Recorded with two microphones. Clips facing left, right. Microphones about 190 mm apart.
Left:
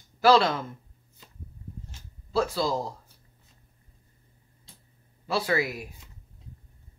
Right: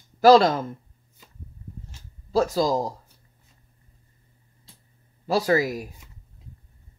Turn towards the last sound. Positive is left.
turn(degrees=-40)  # may be behind; listen again after turning